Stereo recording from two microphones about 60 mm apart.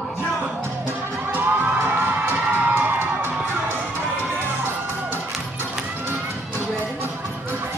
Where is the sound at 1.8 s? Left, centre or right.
Right.